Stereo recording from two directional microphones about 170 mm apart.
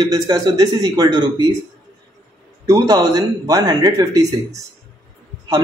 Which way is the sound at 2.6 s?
20° right (ahead or behind).